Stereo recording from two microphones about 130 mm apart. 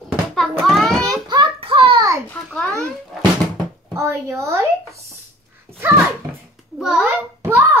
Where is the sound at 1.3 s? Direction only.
40° right (ahead or behind).